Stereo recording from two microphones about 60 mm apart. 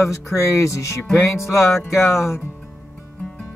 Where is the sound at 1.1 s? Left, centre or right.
Left.